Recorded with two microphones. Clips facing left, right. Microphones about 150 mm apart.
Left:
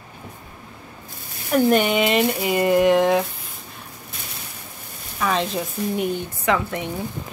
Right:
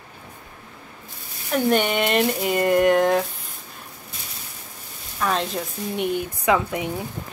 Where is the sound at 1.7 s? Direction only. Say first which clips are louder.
Even; centre (ahead or behind).